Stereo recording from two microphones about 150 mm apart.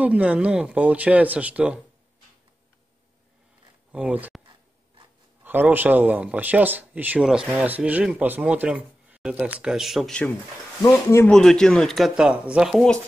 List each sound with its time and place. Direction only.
0.0 s speech: 10° right (ahead or behind)
3.9 s speech: 10° right (ahead or behind)
5.4 s speech: 10° right (ahead or behind)
10.9 s speech: 15° left (ahead or behind)
11.2 s speech: 5° left (ahead or behind)